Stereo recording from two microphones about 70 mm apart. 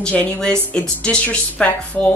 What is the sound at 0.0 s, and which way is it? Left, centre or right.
A woman's voice, centre.